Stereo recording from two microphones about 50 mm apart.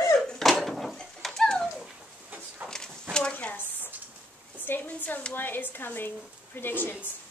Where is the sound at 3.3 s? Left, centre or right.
Left.